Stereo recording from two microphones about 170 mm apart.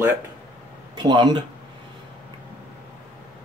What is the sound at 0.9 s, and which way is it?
Speech, 25° right (ahead or behind).